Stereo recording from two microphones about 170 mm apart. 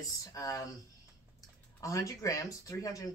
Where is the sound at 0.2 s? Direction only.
20° left (ahead or behind).